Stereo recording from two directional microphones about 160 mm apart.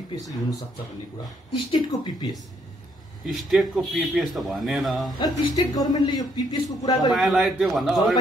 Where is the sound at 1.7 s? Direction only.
25° left (ahead or behind).